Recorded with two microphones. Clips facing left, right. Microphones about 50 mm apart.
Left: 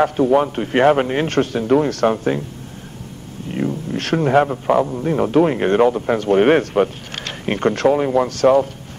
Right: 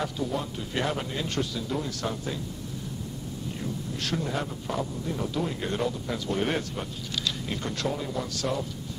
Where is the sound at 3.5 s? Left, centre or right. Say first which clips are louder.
Left 16 dB; left.